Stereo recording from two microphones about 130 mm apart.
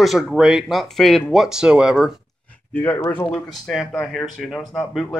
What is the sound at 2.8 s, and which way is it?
Speech, 15° left (ahead or behind).